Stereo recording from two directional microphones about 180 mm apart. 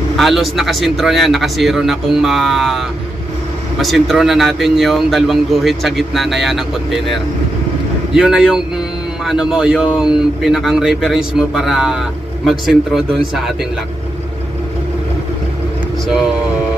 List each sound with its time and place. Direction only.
0.2 s a man's voice: centre (ahead or behind)
3.8 s a man's voice: centre (ahead or behind)